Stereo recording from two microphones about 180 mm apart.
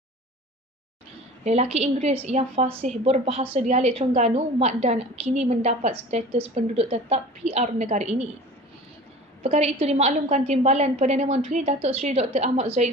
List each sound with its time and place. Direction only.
1.4 s a woman's voice: 35° right (ahead or behind)
9.4 s a woman's voice: 35° right (ahead or behind)